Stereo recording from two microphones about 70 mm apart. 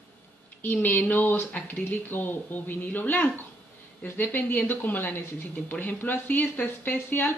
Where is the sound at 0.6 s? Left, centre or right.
Left.